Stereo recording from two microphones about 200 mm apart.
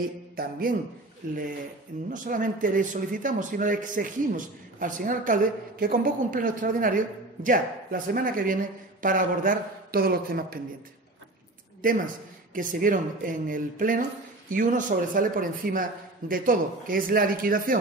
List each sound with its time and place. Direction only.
0.4 s a man's voice: 45° right (ahead or behind)
2.0 s a man's voice: 40° right (ahead or behind)
11.8 s a man's voice: 45° right (ahead or behind)